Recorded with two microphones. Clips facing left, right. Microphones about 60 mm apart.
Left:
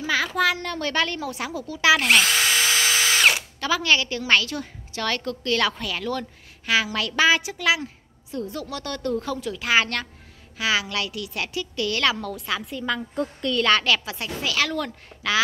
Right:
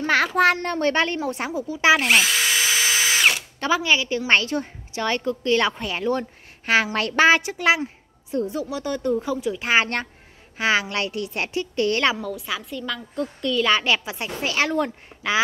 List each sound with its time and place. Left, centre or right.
0.0 s a child's voice: right
0.6 s a woman's voice: right
2.0 s drill: centre
3.5 s speech: right
3.8 s a woman's voice: centre
4.3 s a woman's voice: right
7.8 s a woman's voice: right
12.2 s a woman's voice: centre
13.8 s a woman's voice: right